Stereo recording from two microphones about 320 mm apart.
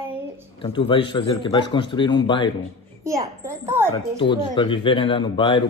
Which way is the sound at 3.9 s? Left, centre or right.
Centre.